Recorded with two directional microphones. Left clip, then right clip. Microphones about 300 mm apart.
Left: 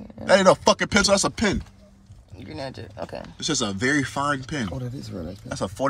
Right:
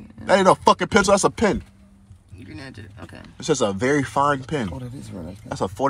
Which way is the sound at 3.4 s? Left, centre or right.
Centre.